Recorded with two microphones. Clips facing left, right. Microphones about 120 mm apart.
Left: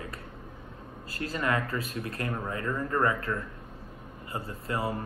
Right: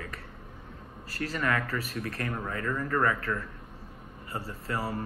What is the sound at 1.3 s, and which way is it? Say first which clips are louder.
Speech: left 1 dB; 15° left (ahead or behind).